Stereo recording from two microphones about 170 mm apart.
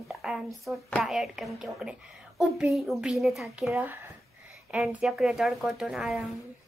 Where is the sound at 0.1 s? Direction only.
Centre (ahead or behind).